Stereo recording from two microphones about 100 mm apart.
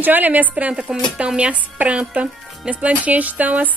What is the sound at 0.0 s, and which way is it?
A woman's voice, 15° right (ahead or behind).